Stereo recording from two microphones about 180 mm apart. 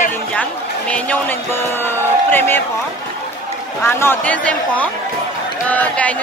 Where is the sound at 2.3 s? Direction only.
10° left (ahead or behind).